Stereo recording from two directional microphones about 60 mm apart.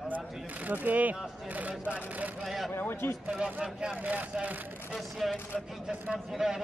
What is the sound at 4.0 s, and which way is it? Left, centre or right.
Speech, right.